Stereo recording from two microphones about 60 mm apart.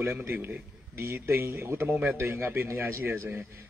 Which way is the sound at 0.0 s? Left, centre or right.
Right.